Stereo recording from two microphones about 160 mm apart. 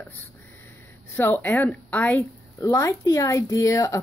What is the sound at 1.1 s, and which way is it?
A woman's voice, 15° left (ahead or behind).